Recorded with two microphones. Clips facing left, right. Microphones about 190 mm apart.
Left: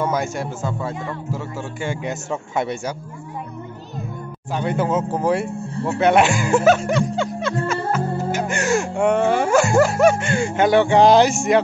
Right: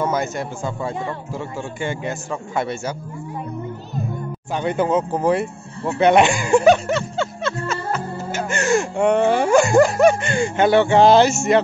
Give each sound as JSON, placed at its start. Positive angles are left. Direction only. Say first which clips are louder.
{"t": 0.1, "sound": "speech", "louder": "even", "side_deg": 10}
{"t": 2.0, "sound": "speech", "louder": "even", "side_deg": 20}
{"t": 4.6, "sound": "speech", "louder": "right 1 dB", "side_deg": 5}